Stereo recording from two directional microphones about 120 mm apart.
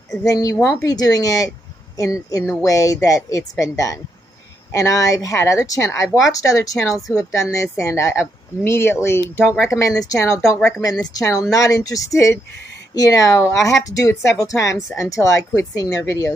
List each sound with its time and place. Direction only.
0.2 s speech: 30° left (ahead or behind)
6.0 s speech: centre (ahead or behind)
6.3 s speech: 30° left (ahead or behind)